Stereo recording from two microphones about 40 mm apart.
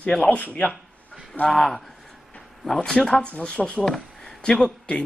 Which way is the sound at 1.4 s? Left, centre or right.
Centre.